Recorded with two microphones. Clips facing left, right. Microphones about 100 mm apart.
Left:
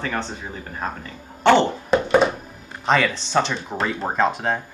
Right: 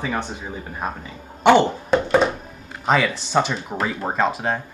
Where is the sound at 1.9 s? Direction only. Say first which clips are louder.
Left 1 dB; centre (ahead or behind).